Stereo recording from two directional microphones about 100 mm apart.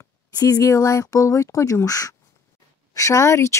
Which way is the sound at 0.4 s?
35° left (ahead or behind).